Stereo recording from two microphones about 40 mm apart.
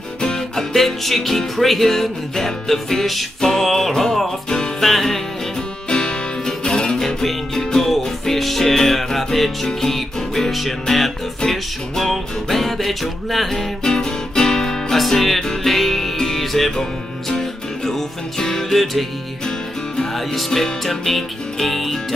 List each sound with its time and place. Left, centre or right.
0.6 s music: centre
5.9 s music: centre
13.8 s music: centre
20.0 s music: centre